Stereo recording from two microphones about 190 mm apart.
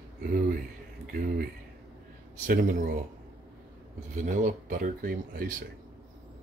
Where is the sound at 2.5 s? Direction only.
45° right (ahead or behind).